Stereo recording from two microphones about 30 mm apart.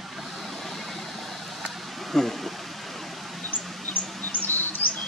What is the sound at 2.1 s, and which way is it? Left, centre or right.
Speech, centre.